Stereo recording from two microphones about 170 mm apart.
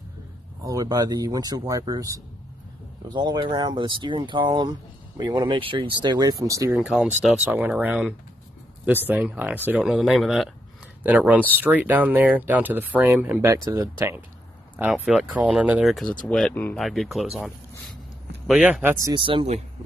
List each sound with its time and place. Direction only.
0.7 s speech: 20° right (ahead or behind); by 17.3 s centre (ahead or behind)
18.5 s speech: 5° right (ahead or behind)
19.0 s speech: 30° right (ahead or behind)